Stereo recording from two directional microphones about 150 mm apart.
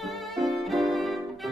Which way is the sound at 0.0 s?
Centre (ahead or behind).